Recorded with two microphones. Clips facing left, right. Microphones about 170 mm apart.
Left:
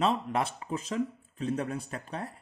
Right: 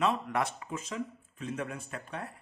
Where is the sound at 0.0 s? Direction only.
30° left (ahead or behind).